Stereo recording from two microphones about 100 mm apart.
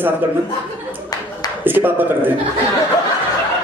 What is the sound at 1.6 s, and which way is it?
Speech, 20° right (ahead or behind).